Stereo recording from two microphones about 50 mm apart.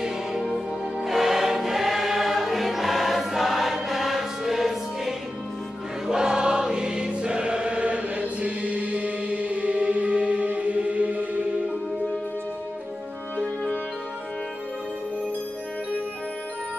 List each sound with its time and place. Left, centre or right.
0.0 s music: centre
1.0 s choir: centre; by 11.4 s right